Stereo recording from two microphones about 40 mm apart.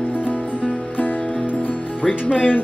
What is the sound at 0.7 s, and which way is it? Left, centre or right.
Music, left.